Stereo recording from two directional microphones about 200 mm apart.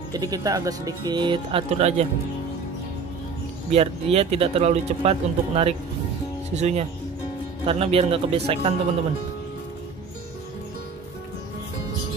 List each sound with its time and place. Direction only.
0.1 s speech: 20° right (ahead or behind)
3.7 s speech: 30° right (ahead or behind)